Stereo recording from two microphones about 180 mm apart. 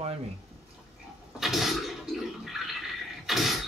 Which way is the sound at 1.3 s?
Centre (ahead or behind).